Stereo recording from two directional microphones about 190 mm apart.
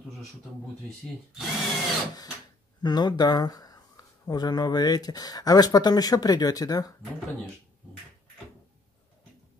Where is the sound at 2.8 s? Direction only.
20° left (ahead or behind).